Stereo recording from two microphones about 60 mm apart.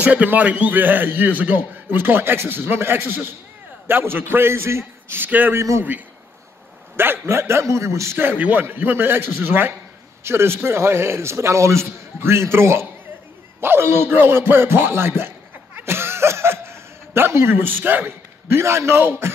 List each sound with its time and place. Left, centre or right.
0.0 s a man's voice: right
5.2 s a man's voice: right
5.6 s a man's voice: right
7.0 s a man's voice: right
8.2 s a man's voice: right
15.8 s chuckle: right
18.6 s a man's voice: right